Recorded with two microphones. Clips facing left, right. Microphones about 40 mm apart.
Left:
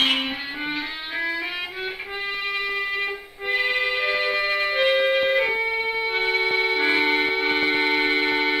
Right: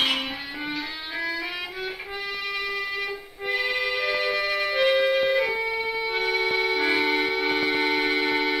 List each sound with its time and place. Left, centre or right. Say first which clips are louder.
0.0 s music: left 3 dB; left
2.5 s music: left 3 dB; left